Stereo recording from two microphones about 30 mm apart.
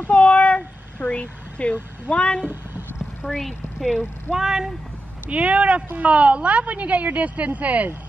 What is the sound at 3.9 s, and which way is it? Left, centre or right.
Speech, right.